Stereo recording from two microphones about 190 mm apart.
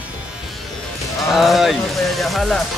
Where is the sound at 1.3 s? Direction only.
Centre (ahead or behind).